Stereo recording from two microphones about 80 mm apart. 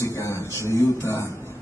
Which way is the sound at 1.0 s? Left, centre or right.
Left.